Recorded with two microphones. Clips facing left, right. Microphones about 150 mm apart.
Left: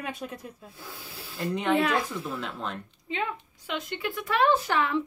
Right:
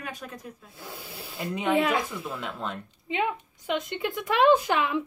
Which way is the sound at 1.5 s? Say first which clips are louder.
Right 1 dB; centre (ahead or behind).